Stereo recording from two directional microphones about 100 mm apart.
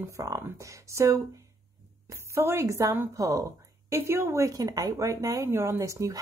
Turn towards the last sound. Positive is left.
turn(degrees=-30)  # may be behind; listen again after turning